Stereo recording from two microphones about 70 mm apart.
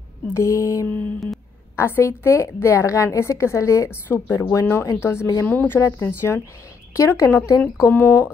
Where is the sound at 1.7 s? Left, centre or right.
Left.